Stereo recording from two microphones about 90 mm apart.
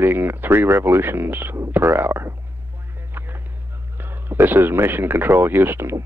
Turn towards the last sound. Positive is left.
turn(degrees=-30)  # may be behind; listen again after turning